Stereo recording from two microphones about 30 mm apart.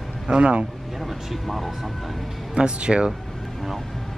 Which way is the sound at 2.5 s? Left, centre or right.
Right.